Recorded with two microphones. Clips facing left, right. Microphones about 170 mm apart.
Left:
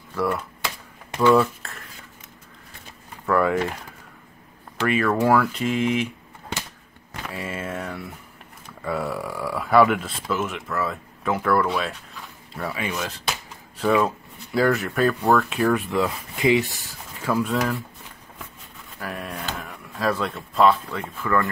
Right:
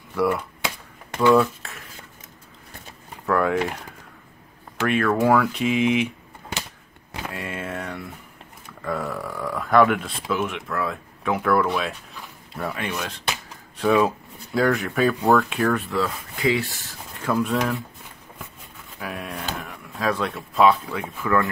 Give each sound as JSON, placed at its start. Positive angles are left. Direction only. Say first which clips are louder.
{"t": 0.1, "sound": "speech", "louder": "right 3 dB", "side_deg": 0}
{"t": 3.3, "sound": "a sound", "louder": "left 1 dB", "side_deg": 0}
{"t": 4.7, "sound": "speech", "louder": "even", "side_deg": 0}
{"t": 7.2, "sound": "a sound", "louder": "left 1 dB", "side_deg": 0}
{"t": 8.8, "sound": "speech", "louder": "left 1 dB", "side_deg": 10}
{"t": 15.9, "sound": "speech", "louder": "left 2 dB", "side_deg": 20}
{"t": 17.2, "sound": "speech", "louder": "even", "side_deg": 0}
{"t": 18.9, "sound": "speech", "louder": "even", "side_deg": 0}